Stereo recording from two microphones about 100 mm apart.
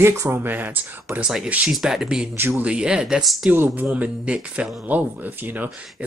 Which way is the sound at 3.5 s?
20° right (ahead or behind).